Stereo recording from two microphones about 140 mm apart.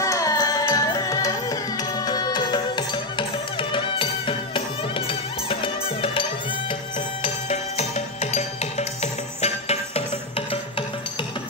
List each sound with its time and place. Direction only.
0.0 s music: 25° left (ahead or behind); by 6.2 s 40° left (ahead or behind)
7.2 s music: 50° left (ahead or behind)